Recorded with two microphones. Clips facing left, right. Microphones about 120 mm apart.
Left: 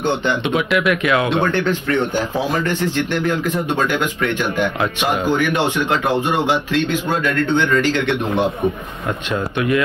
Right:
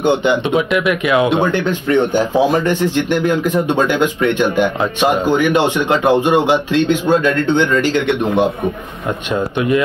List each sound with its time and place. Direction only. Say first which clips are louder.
0.0 s a man's voice: right 5 dB; 15° right (ahead or behind)
9.3 s a man's voice: right 3 dB; 25° right (ahead or behind)